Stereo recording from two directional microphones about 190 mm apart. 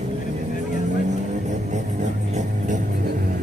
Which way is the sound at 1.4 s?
40° right (ahead or behind).